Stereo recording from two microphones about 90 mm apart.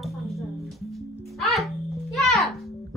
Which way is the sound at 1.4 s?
Centre (ahead or behind).